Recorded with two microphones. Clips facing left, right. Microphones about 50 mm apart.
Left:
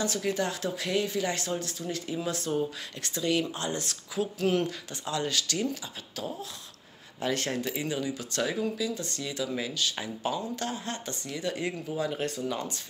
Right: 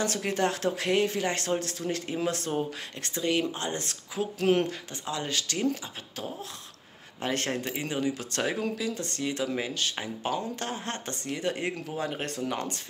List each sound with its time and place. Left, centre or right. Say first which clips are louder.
0.0 s speech: right 2 dB; right
4.4 s speech: right 3 dB; right
5.0 s speech: left 2 dB; right
7.2 s speech: even; right